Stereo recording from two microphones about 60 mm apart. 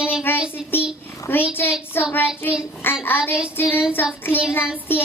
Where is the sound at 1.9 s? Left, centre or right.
Left.